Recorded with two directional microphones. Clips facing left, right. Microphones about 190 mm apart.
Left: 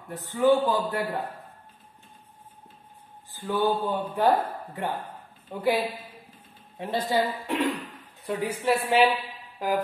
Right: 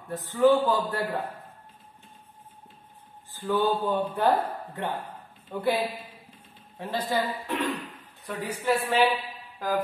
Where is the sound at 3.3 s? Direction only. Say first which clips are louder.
Even; 15° left (ahead or behind).